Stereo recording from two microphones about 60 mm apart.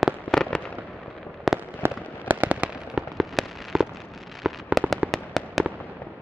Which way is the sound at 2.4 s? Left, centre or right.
Right.